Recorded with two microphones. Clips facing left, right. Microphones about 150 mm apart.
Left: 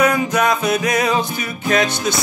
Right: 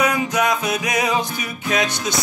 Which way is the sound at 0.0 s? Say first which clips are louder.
Left 3 dB; 15° right (ahead or behind).